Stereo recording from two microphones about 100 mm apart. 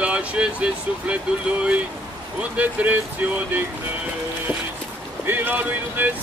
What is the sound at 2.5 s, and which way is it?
Speech, 15° right (ahead or behind).